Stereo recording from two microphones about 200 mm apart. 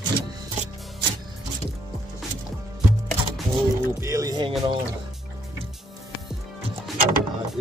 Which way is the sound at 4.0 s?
15° right (ahead or behind).